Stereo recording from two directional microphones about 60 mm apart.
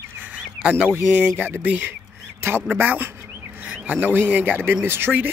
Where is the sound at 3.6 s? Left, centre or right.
Right.